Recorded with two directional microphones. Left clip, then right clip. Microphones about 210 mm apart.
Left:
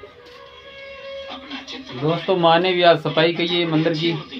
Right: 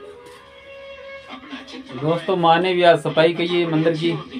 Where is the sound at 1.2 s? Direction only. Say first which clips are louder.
Left 3 dB; 30° left (ahead or behind).